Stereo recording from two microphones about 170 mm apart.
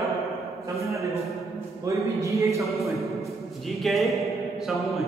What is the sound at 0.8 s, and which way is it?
Speech, 20° right (ahead or behind).